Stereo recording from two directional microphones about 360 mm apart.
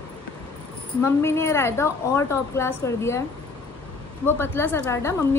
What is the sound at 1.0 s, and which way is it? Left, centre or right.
A woman's voice, centre.